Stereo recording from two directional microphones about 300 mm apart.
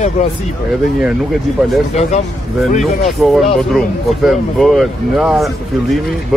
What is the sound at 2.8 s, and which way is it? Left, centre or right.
Speech, centre.